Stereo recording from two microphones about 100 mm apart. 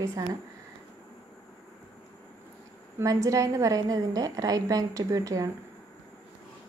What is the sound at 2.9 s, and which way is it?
A woman's voice, 35° right (ahead or behind).